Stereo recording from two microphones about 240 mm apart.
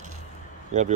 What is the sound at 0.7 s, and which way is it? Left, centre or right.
Speech, right.